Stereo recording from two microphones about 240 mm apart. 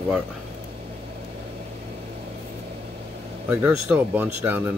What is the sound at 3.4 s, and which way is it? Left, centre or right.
Speech, centre.